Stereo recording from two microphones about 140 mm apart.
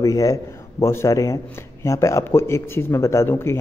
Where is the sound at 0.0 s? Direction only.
25° left (ahead or behind).